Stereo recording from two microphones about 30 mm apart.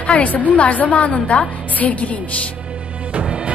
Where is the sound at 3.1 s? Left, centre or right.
Right.